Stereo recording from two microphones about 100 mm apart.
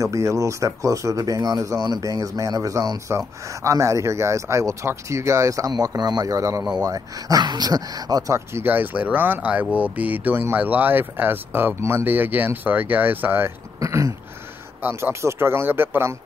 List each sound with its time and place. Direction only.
0.0 s speech: 30° right (ahead or behind)
8.5 s speech: 20° right (ahead or behind)
13.7 s throat clearing: 30° right (ahead or behind)
14.8 s speech: 20° right (ahead or behind)